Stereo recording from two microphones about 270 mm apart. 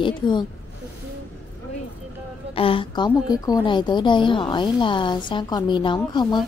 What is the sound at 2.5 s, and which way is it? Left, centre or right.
Speech, centre.